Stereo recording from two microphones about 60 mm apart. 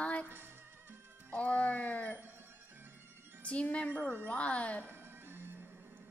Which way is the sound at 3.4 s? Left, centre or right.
Centre.